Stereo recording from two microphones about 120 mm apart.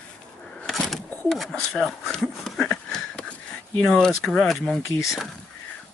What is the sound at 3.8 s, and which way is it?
Speech, 5° left (ahead or behind).